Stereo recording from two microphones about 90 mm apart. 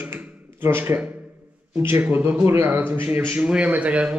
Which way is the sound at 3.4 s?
10° right (ahead or behind).